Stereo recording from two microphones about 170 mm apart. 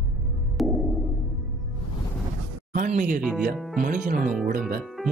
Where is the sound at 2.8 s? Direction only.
45° right (ahead or behind).